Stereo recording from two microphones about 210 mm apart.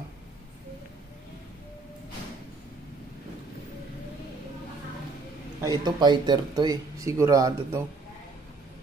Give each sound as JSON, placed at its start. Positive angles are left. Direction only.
{"t": 5.6, "sound": "speech", "side_deg": -15}